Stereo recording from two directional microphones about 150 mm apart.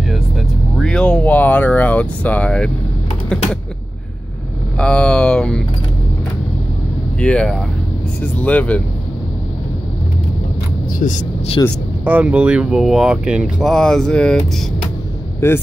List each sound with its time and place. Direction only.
0.7 s speech: 5° left (ahead or behind)
4.7 s speech: 5° left (ahead or behind)
7.2 s speech: 5° left (ahead or behind)
11.0 s speech: 60° left (ahead or behind)
11.6 s speech: 25° left (ahead or behind)
12.0 s speech: 10° right (ahead or behind); by 14.4 s 5° left (ahead or behind)
15.4 s speech: 20° left (ahead or behind)